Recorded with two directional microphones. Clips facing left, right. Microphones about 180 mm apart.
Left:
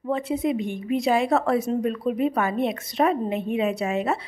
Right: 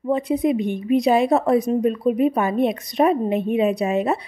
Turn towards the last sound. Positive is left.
turn(degrees=-20)  # may be behind; listen again after turning